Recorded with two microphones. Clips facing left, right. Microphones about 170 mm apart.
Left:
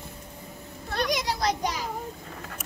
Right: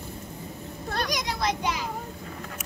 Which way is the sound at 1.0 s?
30° left (ahead or behind).